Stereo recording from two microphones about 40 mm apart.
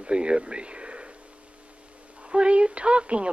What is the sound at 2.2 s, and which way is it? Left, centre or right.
A woman's voice, right.